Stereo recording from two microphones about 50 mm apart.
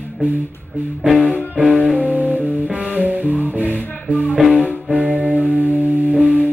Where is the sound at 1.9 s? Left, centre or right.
Right.